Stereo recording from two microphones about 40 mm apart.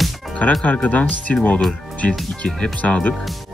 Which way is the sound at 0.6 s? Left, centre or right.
Left.